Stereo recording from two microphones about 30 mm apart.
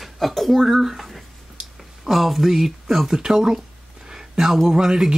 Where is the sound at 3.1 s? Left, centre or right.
Right.